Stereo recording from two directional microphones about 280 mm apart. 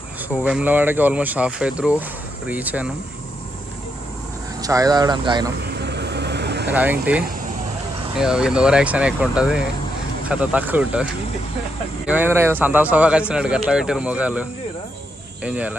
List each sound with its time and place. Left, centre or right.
0.4 s speech: centre
4.6 s speech: centre
5.6 s vehicle: right
6.7 s speech: centre
12.1 s speech: centre